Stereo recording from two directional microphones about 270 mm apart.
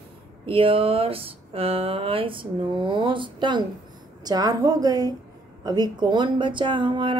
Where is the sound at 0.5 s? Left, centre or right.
Centre.